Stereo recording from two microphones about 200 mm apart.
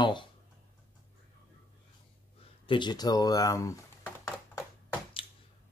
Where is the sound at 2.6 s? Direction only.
20° left (ahead or behind).